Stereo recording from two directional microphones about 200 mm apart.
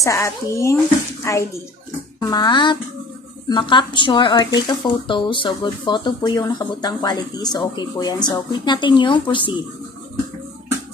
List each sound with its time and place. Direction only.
0.0 s speech: 15° left (ahead or behind)